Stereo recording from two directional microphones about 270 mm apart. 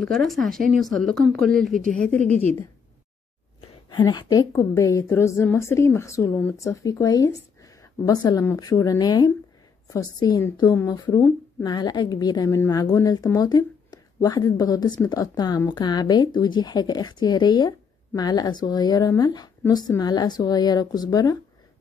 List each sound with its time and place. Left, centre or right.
0.0 s speech: centre
3.9 s a woman's voice: centre